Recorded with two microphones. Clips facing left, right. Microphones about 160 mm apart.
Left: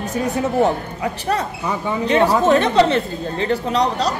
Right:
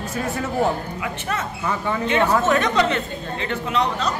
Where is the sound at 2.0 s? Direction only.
35° left (ahead or behind).